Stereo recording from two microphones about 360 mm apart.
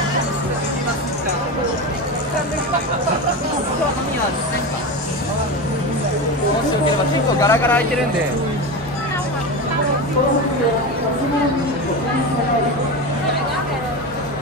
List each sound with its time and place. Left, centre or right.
7.4 s speech: centre